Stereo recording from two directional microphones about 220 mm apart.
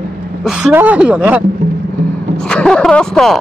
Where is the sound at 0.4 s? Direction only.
Centre (ahead or behind).